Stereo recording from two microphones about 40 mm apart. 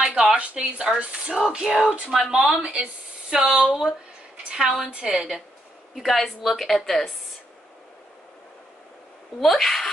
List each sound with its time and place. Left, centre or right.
0.0 s a sound: centre
0.4 s speech: right
1.6 s speech: centre
2.5 s speech: right
5.9 s a woman's voice: centre
9.4 s a woman's voice: centre